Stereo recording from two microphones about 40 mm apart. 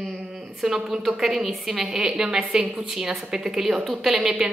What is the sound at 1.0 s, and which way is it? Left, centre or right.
A woman's voice, centre.